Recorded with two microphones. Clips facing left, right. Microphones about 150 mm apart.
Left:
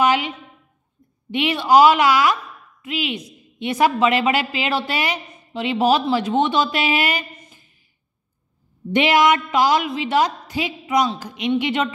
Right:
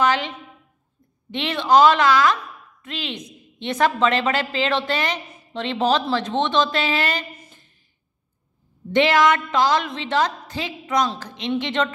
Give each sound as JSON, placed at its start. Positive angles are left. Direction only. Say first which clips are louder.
{"t": 0.0, "sound": "a sound", "louder": "left 2 dB", "side_deg": 15}
{"t": 1.3, "sound": "a woman's voice", "louder": "left 2 dB", "side_deg": 10}
{"t": 8.9, "sound": "a woman's voice", "louder": "left 1 dB", "side_deg": 15}